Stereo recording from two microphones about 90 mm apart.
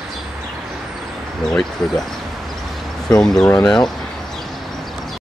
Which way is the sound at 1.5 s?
5° left (ahead or behind).